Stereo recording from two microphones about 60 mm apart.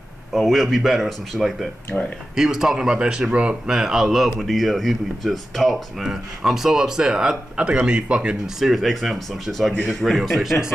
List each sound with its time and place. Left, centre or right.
0.3 s speech: centre
1.9 s speech: centre
2.3 s speech: centre
8.5 s speech: centre